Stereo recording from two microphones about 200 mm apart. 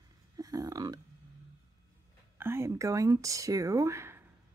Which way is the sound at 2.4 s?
10° right (ahead or behind).